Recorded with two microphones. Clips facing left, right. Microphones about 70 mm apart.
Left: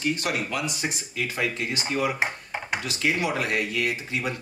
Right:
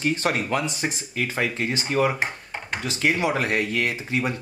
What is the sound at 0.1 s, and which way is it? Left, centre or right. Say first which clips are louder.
Speech: right 4 dB; right.